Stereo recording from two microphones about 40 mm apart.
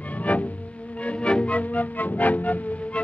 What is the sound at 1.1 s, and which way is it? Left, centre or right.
Music, left.